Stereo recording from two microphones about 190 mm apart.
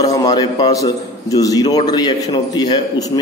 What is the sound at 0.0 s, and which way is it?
A man's voice, 20° left (ahead or behind).